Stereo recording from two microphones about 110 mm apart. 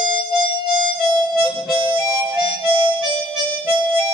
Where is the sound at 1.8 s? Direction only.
45° right (ahead or behind).